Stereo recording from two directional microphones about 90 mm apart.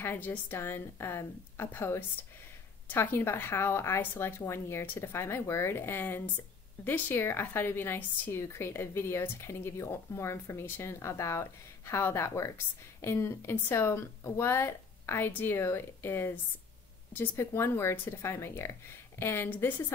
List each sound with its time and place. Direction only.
0.0 s a woman's voice: 25° left (ahead or behind)